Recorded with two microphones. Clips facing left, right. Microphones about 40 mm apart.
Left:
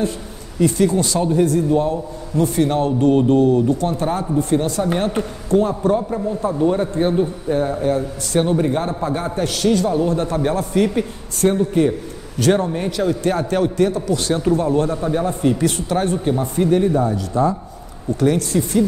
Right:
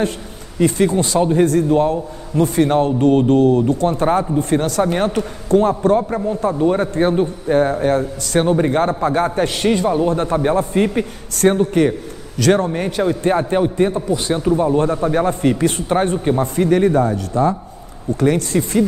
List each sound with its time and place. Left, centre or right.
0.6 s a man's voice: right
8.4 s a man's voice: right
11.5 s a man's voice: right
12.5 s a man's voice: right
14.1 s speech: centre
14.8 s a man's voice: right
15.2 s a man's voice: right
18.2 s a man's voice: right